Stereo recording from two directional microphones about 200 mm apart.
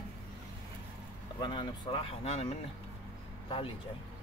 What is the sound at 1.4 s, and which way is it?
Speech, 25° left (ahead or behind).